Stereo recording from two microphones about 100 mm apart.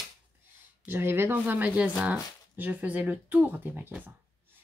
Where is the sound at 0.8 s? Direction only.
20° right (ahead or behind).